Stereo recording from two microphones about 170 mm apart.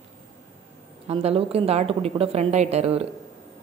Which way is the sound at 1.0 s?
35° right (ahead or behind).